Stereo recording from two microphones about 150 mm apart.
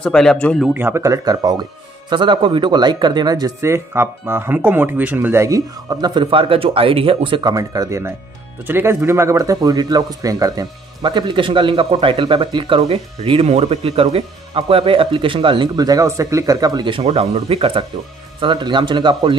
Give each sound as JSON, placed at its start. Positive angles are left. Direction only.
{"t": 0.0, "sound": "speech", "side_deg": 5}
{"t": 0.7, "sound": "speech", "side_deg": -15}
{"t": 7.5, "sound": "speech", "side_deg": -25}
{"t": 17.0, "sound": "speech", "side_deg": -45}